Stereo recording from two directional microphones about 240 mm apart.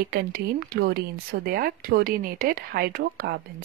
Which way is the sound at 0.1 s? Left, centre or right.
Right.